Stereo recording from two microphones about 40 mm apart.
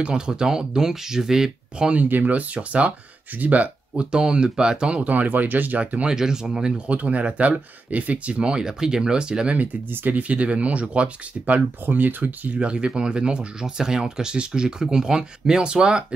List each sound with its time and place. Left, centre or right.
0.0 s speech: right
2.0 s speech: right
4.0 s speech: right
5.0 s speech: right
6.0 s speech: centre
6.9 s speech: right
9.5 s speech: right
11.8 s speech: right
12.5 s speech: right